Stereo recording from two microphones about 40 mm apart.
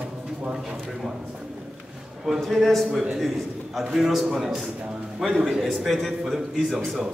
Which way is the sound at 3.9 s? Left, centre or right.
Centre.